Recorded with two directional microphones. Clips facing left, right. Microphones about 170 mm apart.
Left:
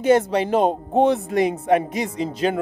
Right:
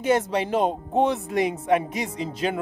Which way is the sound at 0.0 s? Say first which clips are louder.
Left 5 dB; 35° left (ahead or behind).